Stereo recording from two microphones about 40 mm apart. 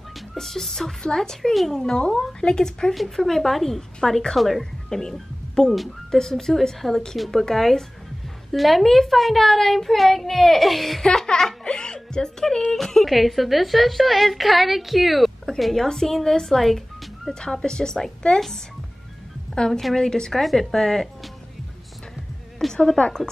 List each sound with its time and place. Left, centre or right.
0.3 s a woman's voice: centre
1.5 s a child's voice: centre
1.8 s a woman's voice: centre
2.9 s a child's voice: centre
4.8 s a woman's voice: centre
11.0 s a woman's voice: centre
15.7 s a woman's voice: centre
16.6 s music: centre
17.3 s a woman's voice: centre
19.5 s a woman's voice: centre
19.8 s a child's voice: centre
20.1 s a woman's voice: centre
22.7 s a woman's voice: centre